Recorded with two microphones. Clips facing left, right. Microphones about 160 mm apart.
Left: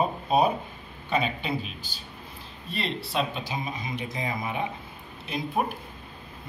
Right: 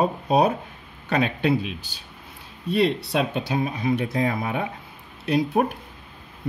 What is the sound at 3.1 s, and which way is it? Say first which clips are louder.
Speech: right 5 dB; 70° right (ahead or behind).